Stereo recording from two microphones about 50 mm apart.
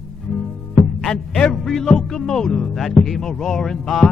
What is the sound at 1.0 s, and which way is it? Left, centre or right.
Speech, centre.